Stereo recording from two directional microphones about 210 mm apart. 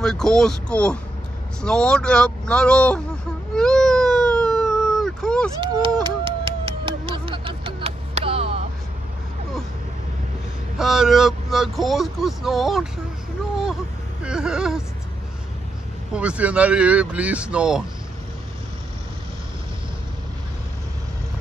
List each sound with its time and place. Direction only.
0.0 s speech: 5° left (ahead or behind)
3.5 s baby cry: 5° left (ahead or behind)
6.0 s a sound: 25° right (ahead or behind)
10.8 s speech: centre (ahead or behind)
14.2 s speech: 5° right (ahead or behind)
16.1 s speech: 5° right (ahead or behind)